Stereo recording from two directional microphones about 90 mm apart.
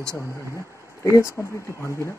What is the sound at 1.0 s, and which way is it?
Speech, 30° left (ahead or behind).